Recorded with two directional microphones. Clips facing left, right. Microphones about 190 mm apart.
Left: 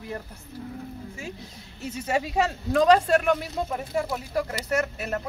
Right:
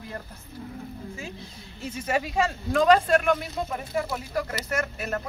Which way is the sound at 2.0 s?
35° left (ahead or behind).